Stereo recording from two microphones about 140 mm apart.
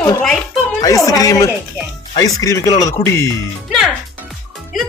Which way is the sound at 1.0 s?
25° left (ahead or behind).